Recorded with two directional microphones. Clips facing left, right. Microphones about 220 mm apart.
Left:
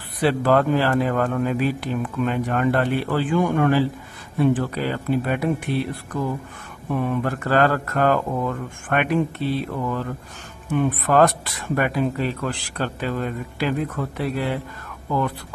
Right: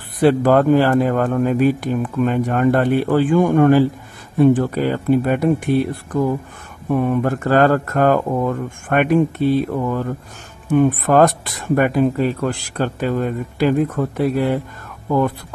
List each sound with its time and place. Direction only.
0.2 s speech: 45° right (ahead or behind)
6.9 s speech: 45° right (ahead or behind)